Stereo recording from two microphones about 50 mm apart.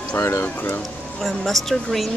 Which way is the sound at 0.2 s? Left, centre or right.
Left.